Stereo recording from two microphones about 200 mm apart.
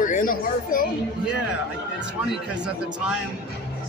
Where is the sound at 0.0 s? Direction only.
45° left (ahead or behind).